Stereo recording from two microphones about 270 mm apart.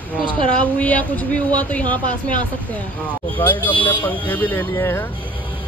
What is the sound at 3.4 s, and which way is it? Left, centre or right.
Speech, centre.